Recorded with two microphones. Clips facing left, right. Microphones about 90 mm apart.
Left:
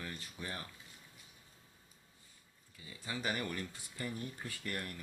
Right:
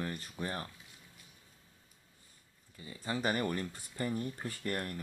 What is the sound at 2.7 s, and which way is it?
Speech, 40° right (ahead or behind).